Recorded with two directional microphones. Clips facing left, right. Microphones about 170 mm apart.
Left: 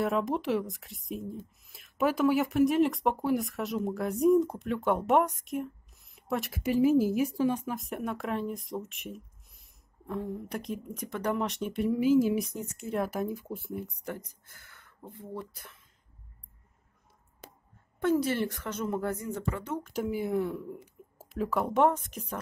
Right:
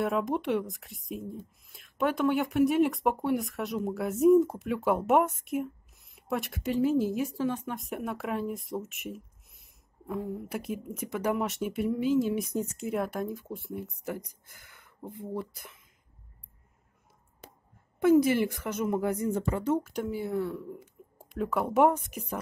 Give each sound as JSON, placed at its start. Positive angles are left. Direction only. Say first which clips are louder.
{"t": 0.0, "sound": "a woman's voice", "louder": "even", "side_deg": 0}
{"t": 7.7, "sound": "a woman's voice", "louder": "even", "side_deg": 0}
{"t": 11.9, "sound": "speech", "louder": "left 3 dB", "side_deg": 10}
{"t": 18.0, "sound": "speech", "louder": "right 5 dB", "side_deg": -10}
{"t": 19.2, "sound": "speech", "louder": "right 6 dB", "side_deg": -25}
{"t": 19.8, "sound": "speech", "louder": "left 1 dB", "side_deg": 5}
{"t": 20.7, "sound": "speech", "louder": "even", "side_deg": 5}